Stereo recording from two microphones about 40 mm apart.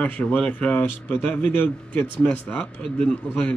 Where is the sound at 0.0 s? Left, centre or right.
Left.